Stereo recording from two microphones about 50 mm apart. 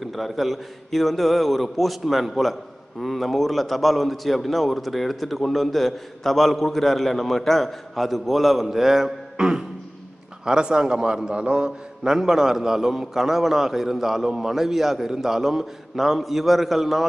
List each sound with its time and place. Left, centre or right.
0.0 s a man's voice: centre